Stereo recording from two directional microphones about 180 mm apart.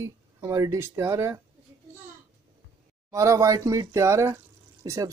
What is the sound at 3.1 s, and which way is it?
Speech, 20° right (ahead or behind).